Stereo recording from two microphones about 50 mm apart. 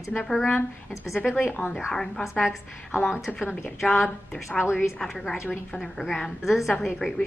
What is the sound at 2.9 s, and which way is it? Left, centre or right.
Speech, left.